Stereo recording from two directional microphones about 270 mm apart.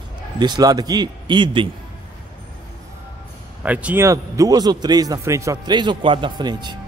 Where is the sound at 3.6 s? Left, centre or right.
Centre.